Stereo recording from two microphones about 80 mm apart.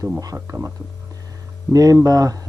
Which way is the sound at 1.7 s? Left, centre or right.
Right.